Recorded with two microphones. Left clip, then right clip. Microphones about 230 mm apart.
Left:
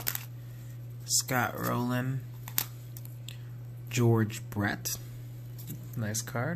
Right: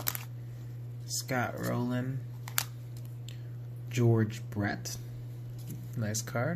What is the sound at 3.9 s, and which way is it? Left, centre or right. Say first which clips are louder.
Speech: left 2 dB; centre.